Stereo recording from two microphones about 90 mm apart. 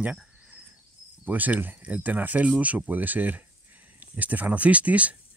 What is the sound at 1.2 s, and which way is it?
Speech, 20° right (ahead or behind).